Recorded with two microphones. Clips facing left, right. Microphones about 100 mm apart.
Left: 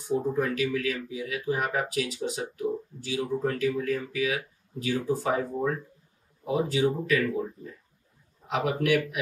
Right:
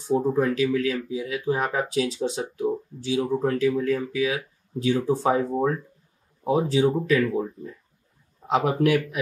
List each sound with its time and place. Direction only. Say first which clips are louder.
0.1 s speech: right 5 dB; 30° right (ahead or behind)
8.5 s speech: right 4 dB; 35° right (ahead or behind)